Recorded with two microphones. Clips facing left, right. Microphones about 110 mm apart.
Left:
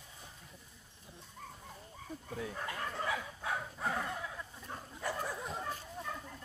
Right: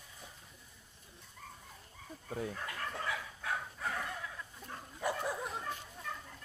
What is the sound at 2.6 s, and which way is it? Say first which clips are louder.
Dog: left 2 dB; 20° left (ahead or behind).